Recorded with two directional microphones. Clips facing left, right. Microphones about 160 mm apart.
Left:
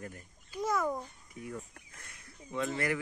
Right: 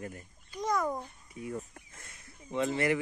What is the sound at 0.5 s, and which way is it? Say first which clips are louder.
Speech: right 1 dB; 5° left (ahead or behind).